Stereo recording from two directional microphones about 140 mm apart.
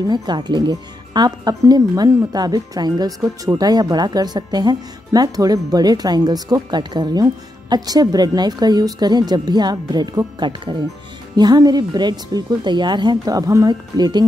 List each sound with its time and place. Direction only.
0.0 s speech: 30° right (ahead or behind)